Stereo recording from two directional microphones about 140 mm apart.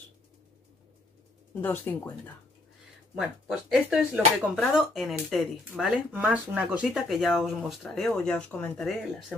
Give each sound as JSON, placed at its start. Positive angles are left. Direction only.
{"t": 1.5, "sound": "speech", "side_deg": 15}
{"t": 3.2, "sound": "speech", "side_deg": -5}